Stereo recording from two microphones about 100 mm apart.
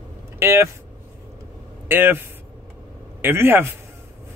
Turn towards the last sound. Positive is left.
turn(degrees=-20)  # may be behind; listen again after turning